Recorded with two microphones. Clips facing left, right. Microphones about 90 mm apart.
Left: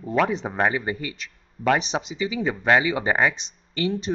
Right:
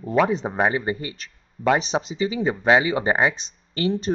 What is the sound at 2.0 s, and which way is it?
Speech, 35° right (ahead or behind).